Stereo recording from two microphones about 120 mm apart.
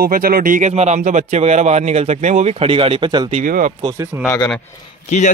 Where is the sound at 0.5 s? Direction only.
75° right (ahead or behind); by 3.2 s 40° right (ahead or behind).